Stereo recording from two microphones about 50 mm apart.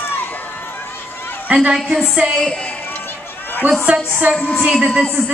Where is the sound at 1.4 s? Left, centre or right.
Right.